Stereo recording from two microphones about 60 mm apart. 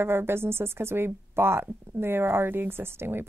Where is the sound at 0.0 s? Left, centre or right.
Right.